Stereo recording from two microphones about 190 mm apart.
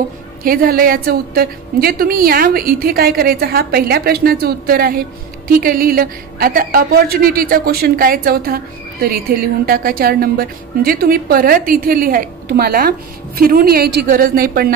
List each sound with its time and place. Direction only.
0.4 s a woman's voice: 50° right (ahead or behind)